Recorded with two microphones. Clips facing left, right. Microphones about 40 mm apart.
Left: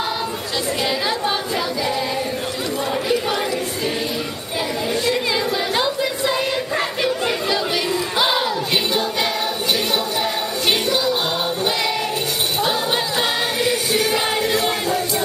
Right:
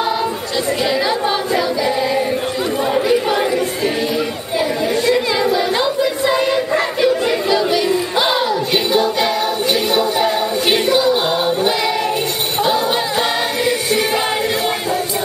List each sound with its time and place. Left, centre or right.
1.5 s choir: centre
2.9 s crowd: centre
5.1 s choir: centre
7.1 s a sound: centre
9.9 s music: centre
13.9 s music: centre